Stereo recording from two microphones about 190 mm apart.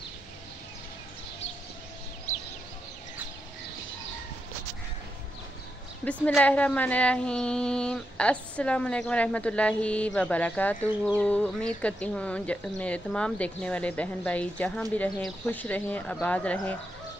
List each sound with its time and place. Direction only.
2.3 s fowl: 40° left (ahead or behind)
6.2 s speech: 5° left (ahead or behind)